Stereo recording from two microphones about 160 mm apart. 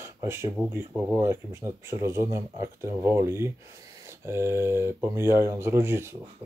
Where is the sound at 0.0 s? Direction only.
15° right (ahead or behind).